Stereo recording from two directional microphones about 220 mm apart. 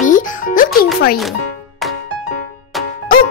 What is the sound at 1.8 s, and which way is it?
Music, centre (ahead or behind).